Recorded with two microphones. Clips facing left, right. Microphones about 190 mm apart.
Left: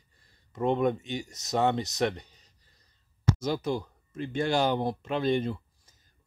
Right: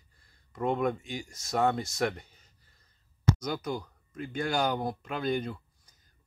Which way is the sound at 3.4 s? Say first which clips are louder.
Left 4 dB; 25° left (ahead or behind).